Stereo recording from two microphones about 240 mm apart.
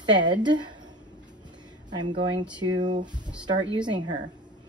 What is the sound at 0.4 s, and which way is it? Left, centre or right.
Speech, centre.